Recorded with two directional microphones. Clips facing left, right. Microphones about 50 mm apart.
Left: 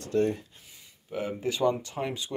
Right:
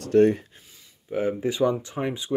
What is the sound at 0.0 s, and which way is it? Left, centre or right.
Speech, right.